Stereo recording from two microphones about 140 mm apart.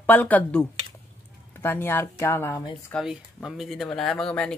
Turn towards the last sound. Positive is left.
turn(degrees=5)  # may be behind; listen again after turning